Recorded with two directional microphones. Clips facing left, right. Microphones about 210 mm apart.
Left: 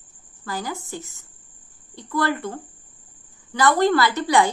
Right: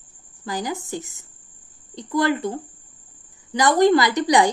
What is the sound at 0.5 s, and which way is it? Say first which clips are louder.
A woman's voice: right 3 dB; 15° right (ahead or behind).